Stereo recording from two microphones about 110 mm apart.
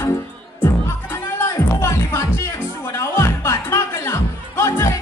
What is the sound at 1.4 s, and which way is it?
Music, 25° left (ahead or behind).